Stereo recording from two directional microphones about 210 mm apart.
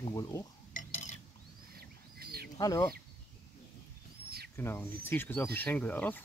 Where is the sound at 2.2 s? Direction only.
45° right (ahead or behind).